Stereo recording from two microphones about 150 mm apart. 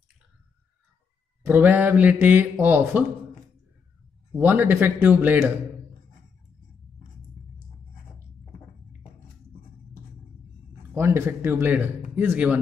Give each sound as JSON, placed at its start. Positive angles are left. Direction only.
{"t": 1.5, "sound": "speech", "side_deg": -10}
{"t": 4.3, "sound": "speech", "side_deg": -10}
{"t": 11.0, "sound": "speech", "side_deg": -15}